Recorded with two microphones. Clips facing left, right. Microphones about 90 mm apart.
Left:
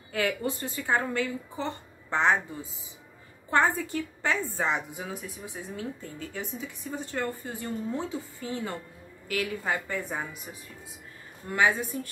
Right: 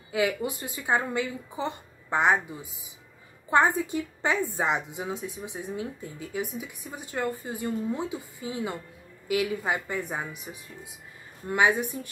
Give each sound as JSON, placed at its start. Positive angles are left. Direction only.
{"t": 0.1, "sound": "a woman's voice", "side_deg": -15}
{"t": 11.4, "sound": "a woman's voice", "side_deg": -20}